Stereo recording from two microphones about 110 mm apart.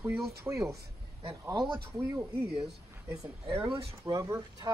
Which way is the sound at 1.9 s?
20° right (ahead or behind).